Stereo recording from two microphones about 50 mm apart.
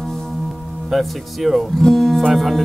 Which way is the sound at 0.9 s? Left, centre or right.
Centre.